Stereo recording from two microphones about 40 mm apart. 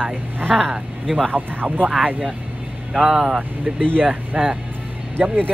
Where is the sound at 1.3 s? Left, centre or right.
Right.